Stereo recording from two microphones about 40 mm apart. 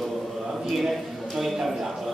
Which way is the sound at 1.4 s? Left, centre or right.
Centre.